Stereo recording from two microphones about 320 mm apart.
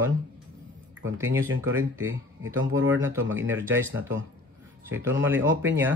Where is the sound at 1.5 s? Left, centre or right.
Right.